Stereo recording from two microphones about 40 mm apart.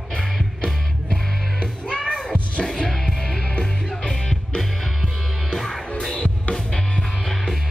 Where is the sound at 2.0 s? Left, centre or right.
Centre.